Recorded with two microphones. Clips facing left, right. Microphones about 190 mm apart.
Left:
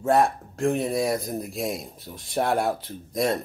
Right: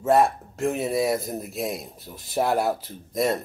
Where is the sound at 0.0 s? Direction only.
Centre (ahead or behind).